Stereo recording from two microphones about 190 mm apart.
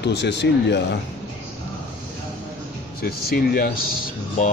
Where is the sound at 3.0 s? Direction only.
50° left (ahead or behind).